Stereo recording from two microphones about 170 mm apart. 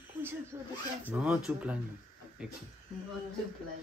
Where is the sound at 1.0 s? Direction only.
5° right (ahead or behind).